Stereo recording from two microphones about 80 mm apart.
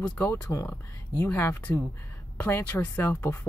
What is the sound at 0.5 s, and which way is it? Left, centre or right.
Speech, left.